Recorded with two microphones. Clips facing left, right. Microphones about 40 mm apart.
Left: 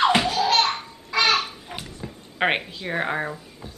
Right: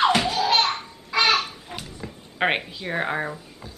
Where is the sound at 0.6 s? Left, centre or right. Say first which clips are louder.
Left 1 dB; centre.